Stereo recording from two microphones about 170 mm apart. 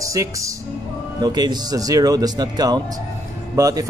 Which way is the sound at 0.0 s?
20° right (ahead or behind).